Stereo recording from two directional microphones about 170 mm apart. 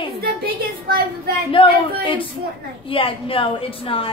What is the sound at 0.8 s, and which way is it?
Speech, 65° right (ahead or behind).